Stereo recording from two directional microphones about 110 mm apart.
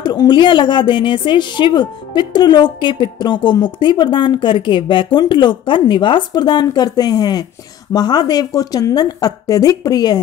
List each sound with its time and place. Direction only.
0.0 s speech: 40° left (ahead or behind)